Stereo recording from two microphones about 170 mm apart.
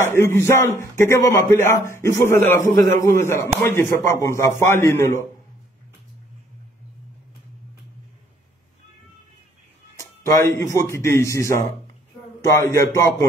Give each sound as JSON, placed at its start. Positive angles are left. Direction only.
{"t": 0.0, "sound": "speech", "side_deg": 15}
{"t": 9.9, "sound": "speech", "side_deg": 20}